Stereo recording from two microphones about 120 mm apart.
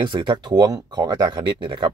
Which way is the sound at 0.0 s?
45° right (ahead or behind).